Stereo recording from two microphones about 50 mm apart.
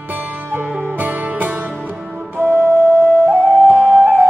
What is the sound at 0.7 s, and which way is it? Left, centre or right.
Music, right.